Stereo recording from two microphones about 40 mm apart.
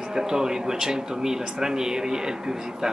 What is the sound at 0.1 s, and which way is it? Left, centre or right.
Speech, centre.